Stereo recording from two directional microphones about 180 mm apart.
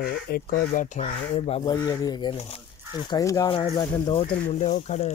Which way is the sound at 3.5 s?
30° left (ahead or behind).